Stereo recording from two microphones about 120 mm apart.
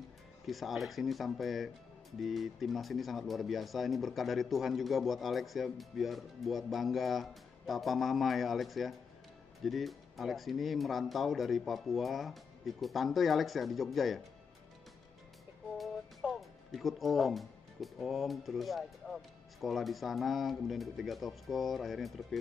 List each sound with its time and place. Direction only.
0.5 s speech: centre (ahead or behind)
15.8 s speech: centre (ahead or behind)